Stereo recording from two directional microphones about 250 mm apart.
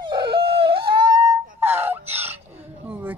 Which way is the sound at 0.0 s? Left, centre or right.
Centre.